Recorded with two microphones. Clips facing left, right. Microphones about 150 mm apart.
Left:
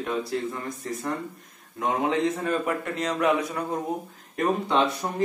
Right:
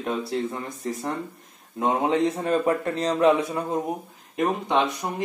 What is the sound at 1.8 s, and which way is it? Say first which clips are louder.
A man's voice: right 2 dB; 30° right (ahead or behind).